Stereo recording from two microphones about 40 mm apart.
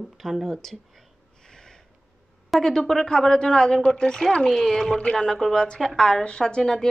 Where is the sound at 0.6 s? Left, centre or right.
Centre.